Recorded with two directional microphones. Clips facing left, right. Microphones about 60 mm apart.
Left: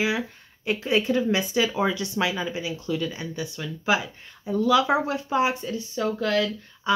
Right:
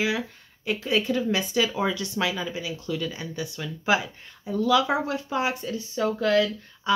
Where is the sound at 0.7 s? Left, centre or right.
Left.